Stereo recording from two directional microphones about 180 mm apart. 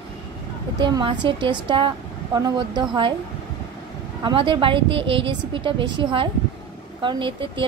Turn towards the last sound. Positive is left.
turn(degrees=-30)  # may be behind; listen again after turning